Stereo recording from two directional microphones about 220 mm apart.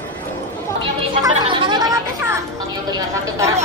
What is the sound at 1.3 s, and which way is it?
Gargling, 20° right (ahead or behind).